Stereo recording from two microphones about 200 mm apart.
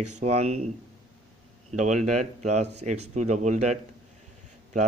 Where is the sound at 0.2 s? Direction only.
35° right (ahead or behind).